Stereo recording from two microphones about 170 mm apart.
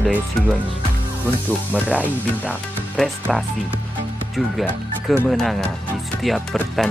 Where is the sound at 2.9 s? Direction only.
Centre (ahead or behind).